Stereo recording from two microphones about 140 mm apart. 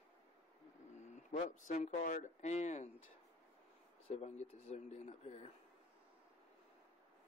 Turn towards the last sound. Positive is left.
turn(degrees=50)  # may be behind; listen again after turning